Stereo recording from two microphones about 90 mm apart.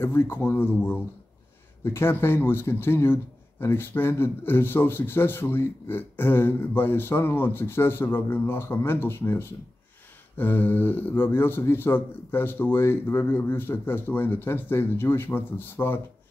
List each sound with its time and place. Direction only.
0.0 s a man's voice: 25° left (ahead or behind)